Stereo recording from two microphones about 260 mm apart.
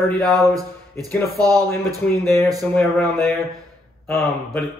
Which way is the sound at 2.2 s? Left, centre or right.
Centre.